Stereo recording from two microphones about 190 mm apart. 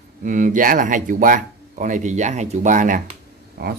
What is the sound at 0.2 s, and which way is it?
A man's voice, 45° right (ahead or behind).